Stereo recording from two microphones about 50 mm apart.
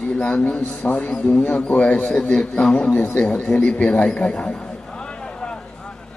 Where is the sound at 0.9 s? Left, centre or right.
Left.